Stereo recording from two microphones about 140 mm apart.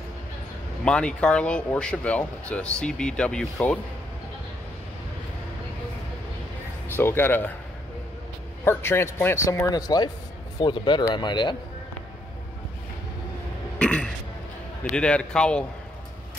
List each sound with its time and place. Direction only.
0.8 s speech: 5° left (ahead or behind)
6.9 s speech: 15° left (ahead or behind)
8.6 s a man's voice: 15° left (ahead or behind); by 11.5 s 35° left (ahead or behind)
13.7 s burping: 5° left (ahead or behind)
15.0 s speech: 5° left (ahead or behind)